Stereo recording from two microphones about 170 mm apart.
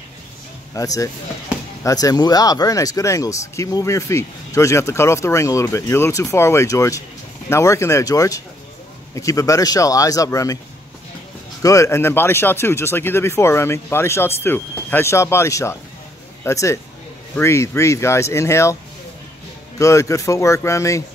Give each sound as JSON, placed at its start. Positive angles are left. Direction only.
{"t": 0.7, "sound": "speech", "side_deg": 20}
{"t": 11.6, "sound": "speech", "side_deg": 20}
{"t": 19.8, "sound": "speech", "side_deg": 20}